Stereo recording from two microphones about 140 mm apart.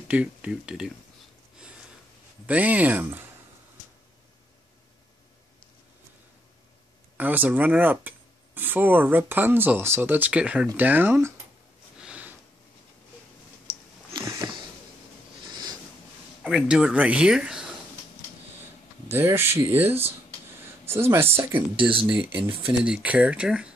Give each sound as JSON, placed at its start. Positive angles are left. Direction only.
{"t": 0.1, "sound": "speech", "side_deg": -10}
{"t": 2.4, "sound": "speech", "side_deg": -10}
{"t": 7.2, "sound": "speech", "side_deg": -10}
{"t": 12.0, "sound": "sniff", "side_deg": -10}
{"t": 14.1, "sound": "sniff", "side_deg": -25}
{"t": 15.5, "sound": "a sound", "side_deg": -30}
{"t": 16.4, "sound": "speech", "side_deg": -5}
{"t": 19.0, "sound": "speech", "side_deg": -15}
{"t": 21.7, "sound": "speech", "side_deg": -40}
{"t": 22.7, "sound": "speech", "side_deg": -10}